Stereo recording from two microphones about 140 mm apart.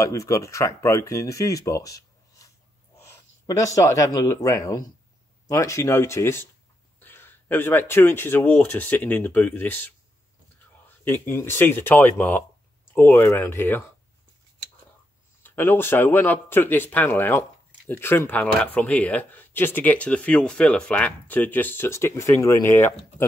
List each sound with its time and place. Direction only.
0.0 s speech: 20° left (ahead or behind)
11.4 s speech: 15° left (ahead or behind)
15.4 s speech: 15° left (ahead or behind)